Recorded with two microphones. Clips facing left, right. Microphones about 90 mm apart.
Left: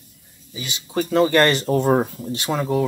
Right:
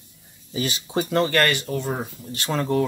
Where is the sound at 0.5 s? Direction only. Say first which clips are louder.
Right 7 dB; 40° right (ahead or behind).